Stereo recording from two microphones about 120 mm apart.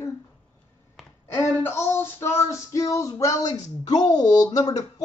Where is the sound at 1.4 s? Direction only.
25° left (ahead or behind).